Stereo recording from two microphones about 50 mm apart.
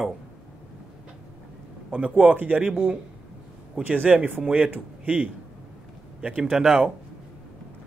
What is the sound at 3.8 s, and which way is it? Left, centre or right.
Speech, right.